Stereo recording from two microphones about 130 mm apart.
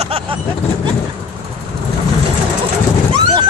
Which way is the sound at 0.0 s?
45° right (ahead or behind).